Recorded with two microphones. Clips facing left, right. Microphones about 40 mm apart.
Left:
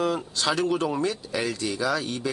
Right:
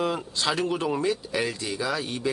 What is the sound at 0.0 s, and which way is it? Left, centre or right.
Speech, right.